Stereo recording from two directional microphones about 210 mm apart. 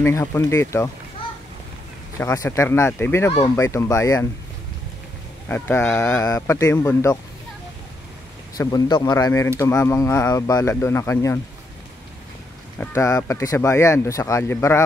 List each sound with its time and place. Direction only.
0.0 s speech: 10° left (ahead or behind)
2.1 s speech: 15° left (ahead or behind)
5.5 s speech: 10° left (ahead or behind)
8.5 s speech: 20° left (ahead or behind)
12.7 s speech: 10° left (ahead or behind)